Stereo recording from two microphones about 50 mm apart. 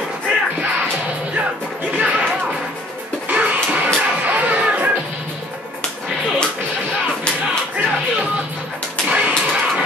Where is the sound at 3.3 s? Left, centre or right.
Right.